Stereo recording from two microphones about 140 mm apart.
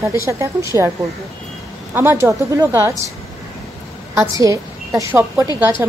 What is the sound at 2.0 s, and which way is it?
Speech, 15° right (ahead or behind).